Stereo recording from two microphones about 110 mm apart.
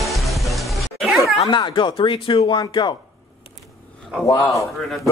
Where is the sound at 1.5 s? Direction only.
45° left (ahead or behind).